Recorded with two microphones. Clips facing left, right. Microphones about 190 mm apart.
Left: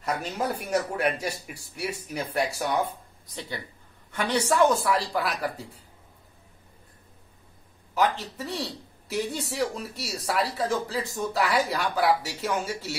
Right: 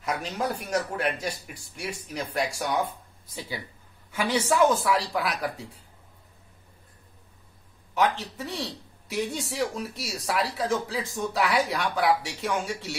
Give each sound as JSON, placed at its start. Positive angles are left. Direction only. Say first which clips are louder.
{"t": 0.0, "sound": "a man's voice", "louder": "even", "side_deg": 0}
{"t": 7.9, "sound": "a man's voice", "louder": "even", "side_deg": 0}